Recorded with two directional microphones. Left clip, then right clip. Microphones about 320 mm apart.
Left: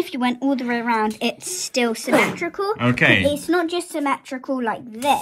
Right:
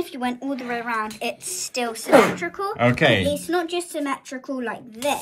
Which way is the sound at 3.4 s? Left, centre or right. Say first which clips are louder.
Left 3 dB; centre.